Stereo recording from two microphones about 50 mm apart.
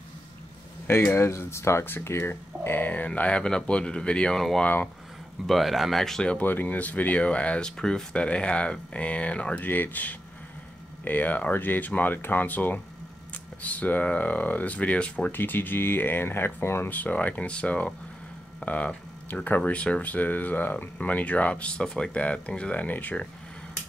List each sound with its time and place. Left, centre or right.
0.8 s speech: left
1.9 s speech: left
3.1 s speech: left
4.4 s speech: centre
6.4 s speech: left
7.6 s speech: centre
9.7 s speech: left
16.9 s speech: left